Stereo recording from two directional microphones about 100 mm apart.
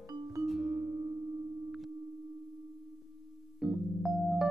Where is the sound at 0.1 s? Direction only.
35° right (ahead or behind).